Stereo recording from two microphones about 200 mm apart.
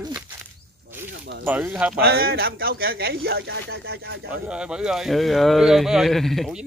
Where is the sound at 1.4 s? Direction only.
10° right (ahead or behind).